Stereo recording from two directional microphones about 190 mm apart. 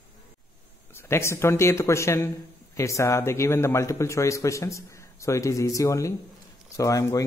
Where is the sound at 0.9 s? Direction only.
15° left (ahead or behind).